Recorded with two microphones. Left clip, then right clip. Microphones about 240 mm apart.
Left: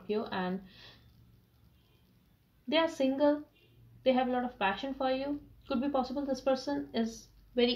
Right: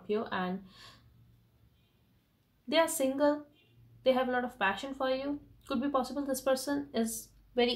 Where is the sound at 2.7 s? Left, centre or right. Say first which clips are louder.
Right 1 dB; right.